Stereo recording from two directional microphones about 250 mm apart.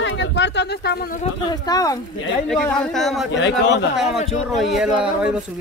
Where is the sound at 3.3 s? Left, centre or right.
Left.